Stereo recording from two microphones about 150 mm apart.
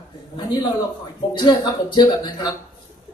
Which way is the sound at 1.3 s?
30° left (ahead or behind).